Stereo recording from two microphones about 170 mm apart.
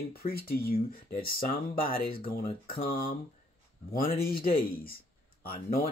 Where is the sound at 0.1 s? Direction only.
60° left (ahead or behind).